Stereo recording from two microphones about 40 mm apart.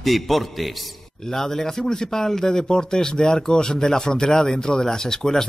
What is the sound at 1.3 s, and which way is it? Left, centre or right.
A man's voice, centre.